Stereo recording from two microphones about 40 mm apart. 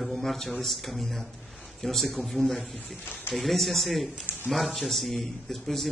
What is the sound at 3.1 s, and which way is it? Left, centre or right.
Speech, left.